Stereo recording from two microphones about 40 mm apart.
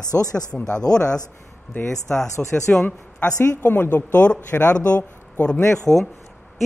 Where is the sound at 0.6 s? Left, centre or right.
Left.